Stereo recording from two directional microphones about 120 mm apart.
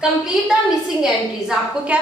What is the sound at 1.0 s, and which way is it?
A woman's voice, 10° right (ahead or behind).